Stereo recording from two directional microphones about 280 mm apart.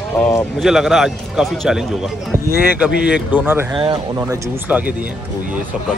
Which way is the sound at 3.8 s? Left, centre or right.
Centre.